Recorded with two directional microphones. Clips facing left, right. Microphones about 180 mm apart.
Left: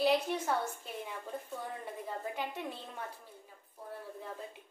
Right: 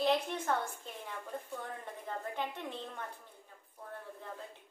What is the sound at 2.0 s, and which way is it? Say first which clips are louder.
A woman's voice: right 1 dB; 10° left (ahead or behind).